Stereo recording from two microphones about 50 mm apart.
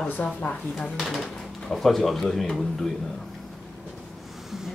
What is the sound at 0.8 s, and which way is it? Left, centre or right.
Speech, centre.